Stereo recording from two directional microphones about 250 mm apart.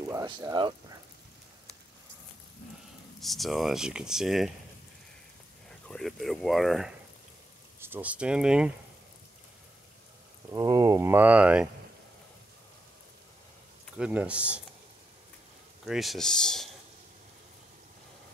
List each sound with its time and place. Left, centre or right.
0.0 s speech: centre
3.2 s speech: centre
5.7 s speech: centre
10.5 s speech: centre
13.9 s speech: centre
15.8 s speech: centre